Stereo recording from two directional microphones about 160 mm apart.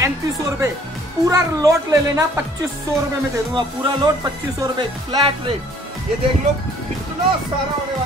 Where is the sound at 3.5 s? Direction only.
30° right (ahead or behind).